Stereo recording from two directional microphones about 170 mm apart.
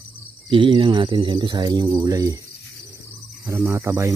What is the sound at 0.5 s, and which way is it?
Speech, 30° right (ahead or behind).